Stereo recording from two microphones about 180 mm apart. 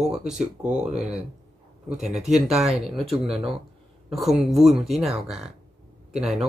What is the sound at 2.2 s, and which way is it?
Speech, 5° right (ahead or behind).